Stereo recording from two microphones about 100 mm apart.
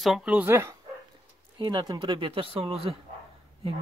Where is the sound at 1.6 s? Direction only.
45° right (ahead or behind); by 3.0 s 70° right (ahead or behind).